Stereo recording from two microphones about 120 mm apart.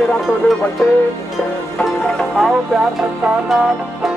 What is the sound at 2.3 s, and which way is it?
Music, 5° right (ahead or behind).